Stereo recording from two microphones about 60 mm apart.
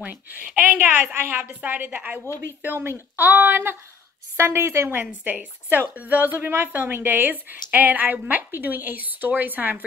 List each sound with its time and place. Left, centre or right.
0.0 s a woman's voice: right
2.6 s a woman's voice: right
5.2 s a woman's voice: right